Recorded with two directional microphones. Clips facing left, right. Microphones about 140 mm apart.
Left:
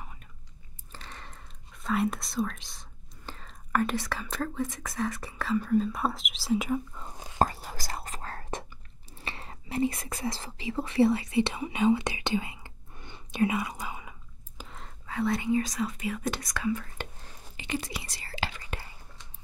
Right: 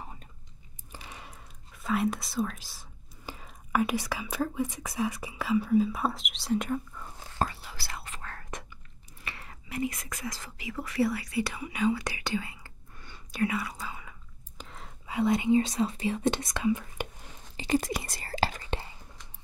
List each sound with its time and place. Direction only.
0.0 s whispering: 30° right (ahead or behind)
0.9 s speech: 10° right (ahead or behind)
6.9 s whispering: 20° left (ahead or behind)
7.3 s whispering: 45° left (ahead or behind)
9.2 s speech: 30° left (ahead or behind)
14.6 s whispering: centre (ahead or behind)
15.0 s speech: 15° right (ahead or behind)
17.6 s whispering: 40° right (ahead or behind)